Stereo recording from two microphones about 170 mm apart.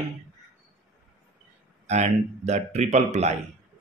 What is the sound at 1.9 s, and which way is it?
Speech, 40° right (ahead or behind).